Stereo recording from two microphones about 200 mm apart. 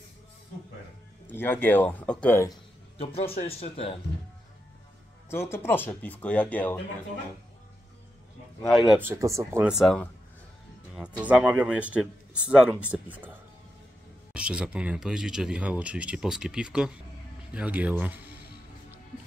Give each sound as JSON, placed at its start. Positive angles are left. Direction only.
{"t": 1.2, "sound": "speech", "side_deg": 10}
{"t": 3.3, "sound": "speech", "side_deg": 30}
{"t": 5.3, "sound": "speech", "side_deg": 10}
{"t": 8.6, "sound": "speech", "side_deg": 0}
{"t": 14.3, "sound": "speech", "side_deg": -5}